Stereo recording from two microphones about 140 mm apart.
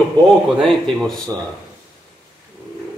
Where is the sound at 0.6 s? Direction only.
5° left (ahead or behind).